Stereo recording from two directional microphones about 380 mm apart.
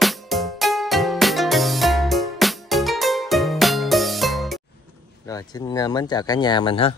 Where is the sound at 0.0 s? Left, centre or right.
Centre.